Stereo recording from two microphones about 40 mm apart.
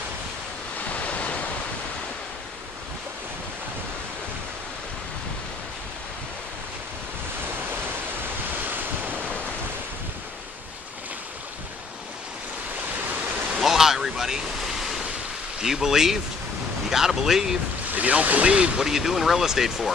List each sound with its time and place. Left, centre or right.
0.8 s waves: left
8.5 s waves: right
13.1 s a sound: right
13.6 s waves: centre
15.6 s speech: centre
17.9 s speech: right
18.8 s speech: centre